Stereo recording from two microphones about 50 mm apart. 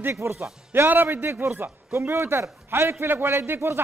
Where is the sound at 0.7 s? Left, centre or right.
Right.